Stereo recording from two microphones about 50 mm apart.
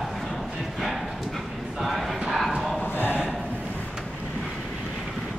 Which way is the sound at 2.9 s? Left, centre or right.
Left.